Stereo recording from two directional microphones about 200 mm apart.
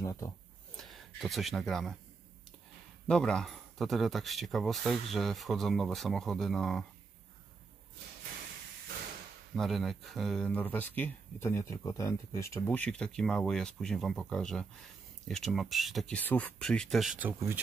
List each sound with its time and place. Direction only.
0.0 s a sound: 15° left (ahead or behind)
0.7 s speech: centre (ahead or behind)
3.1 s speech: 5° left (ahead or behind)
9.6 s speech: centre (ahead or behind)